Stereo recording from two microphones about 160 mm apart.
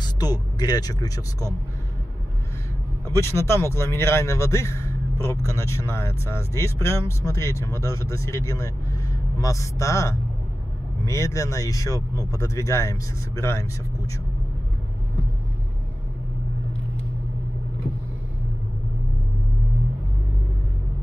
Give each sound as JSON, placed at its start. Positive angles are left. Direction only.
{"t": 0.0, "sound": "speech", "side_deg": 25}
{"t": 3.1, "sound": "a man's voice", "side_deg": 15}